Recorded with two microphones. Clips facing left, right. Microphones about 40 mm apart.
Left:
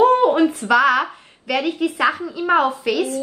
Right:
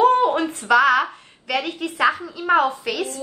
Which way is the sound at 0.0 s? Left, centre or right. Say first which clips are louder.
Left 3 dB; centre.